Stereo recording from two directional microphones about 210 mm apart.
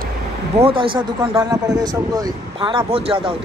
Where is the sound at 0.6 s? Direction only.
25° right (ahead or behind).